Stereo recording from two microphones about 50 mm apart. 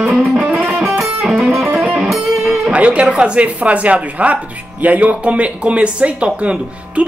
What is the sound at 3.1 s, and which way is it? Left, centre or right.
Speech, right.